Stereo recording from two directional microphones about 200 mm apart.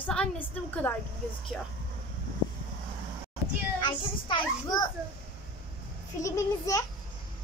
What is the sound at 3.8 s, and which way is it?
Speech, 25° left (ahead or behind).